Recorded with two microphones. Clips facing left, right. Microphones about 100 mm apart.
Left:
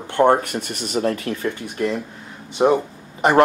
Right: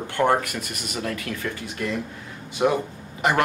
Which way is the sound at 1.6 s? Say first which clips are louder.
Left 5 dB; 20° left (ahead or behind).